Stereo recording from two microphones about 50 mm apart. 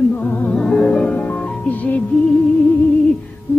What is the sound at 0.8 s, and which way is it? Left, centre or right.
Music, left.